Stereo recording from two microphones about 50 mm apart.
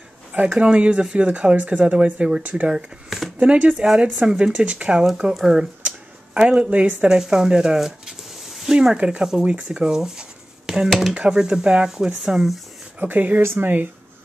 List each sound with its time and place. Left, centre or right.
0.3 s speech: right
2.7 s speech: centre
3.3 s speech: right
3.7 s speech: centre
5.9 s a sound: right
7.0 s speech: centre
8.5 s a sound: centre
8.9 s speech: centre
13.0 s speech: right
13.4 s speech: right